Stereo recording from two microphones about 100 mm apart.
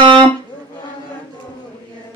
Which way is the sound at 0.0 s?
55° right (ahead or behind).